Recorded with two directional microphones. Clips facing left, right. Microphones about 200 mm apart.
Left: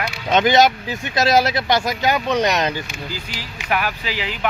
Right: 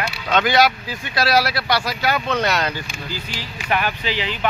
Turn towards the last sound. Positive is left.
turn(degrees=10)  # may be behind; listen again after turning